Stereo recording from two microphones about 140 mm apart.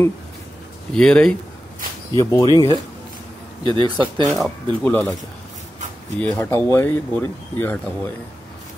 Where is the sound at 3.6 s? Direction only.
35° right (ahead or behind).